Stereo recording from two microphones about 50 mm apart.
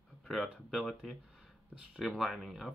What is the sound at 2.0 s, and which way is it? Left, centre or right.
Speech, centre.